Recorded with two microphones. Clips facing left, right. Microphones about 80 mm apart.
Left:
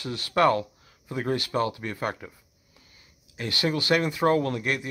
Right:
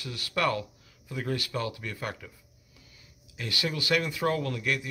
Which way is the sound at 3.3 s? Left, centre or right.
Left.